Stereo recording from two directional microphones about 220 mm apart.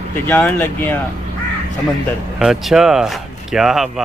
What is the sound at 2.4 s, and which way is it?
Speech, 5° right (ahead or behind).